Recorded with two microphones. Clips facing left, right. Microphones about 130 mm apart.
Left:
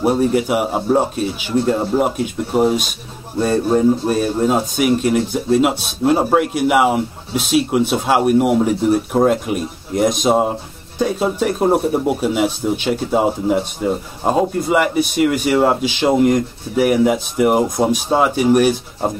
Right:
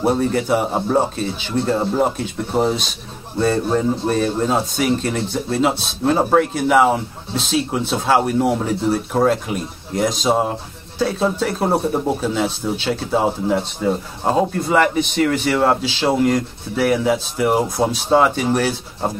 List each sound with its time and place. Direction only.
0.0 s speech: 10° left (ahead or behind)